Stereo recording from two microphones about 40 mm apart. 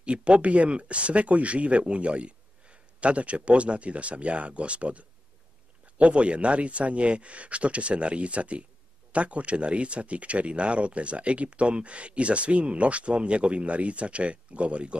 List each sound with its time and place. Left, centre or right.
0.0 s speech: right